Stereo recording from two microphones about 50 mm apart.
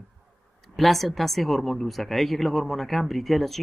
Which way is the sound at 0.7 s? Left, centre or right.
Centre.